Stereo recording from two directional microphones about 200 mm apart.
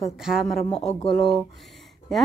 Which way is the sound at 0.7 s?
30° left (ahead or behind).